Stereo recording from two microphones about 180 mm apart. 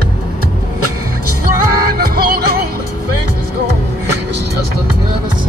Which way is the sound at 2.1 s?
55° right (ahead or behind).